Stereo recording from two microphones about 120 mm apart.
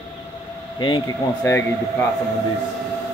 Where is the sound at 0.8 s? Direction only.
40° left (ahead or behind).